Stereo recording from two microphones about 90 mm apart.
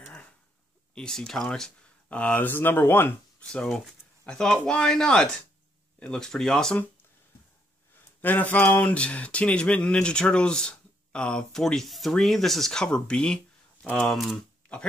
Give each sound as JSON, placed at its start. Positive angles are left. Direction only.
{"t": 0.9, "sound": "speech", "side_deg": 5}
{"t": 3.3, "sound": "speech", "side_deg": 10}
{"t": 8.2, "sound": "speech", "side_deg": 20}